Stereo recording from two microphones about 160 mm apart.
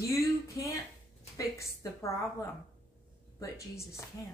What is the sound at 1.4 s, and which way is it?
Speech, 20° left (ahead or behind).